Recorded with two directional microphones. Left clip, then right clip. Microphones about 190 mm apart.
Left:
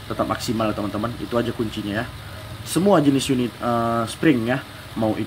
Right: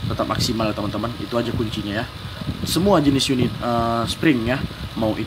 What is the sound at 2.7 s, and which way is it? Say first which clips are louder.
Speech: even; centre (ahead or behind).